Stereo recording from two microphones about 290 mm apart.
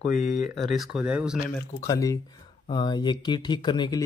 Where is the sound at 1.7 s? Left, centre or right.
Centre.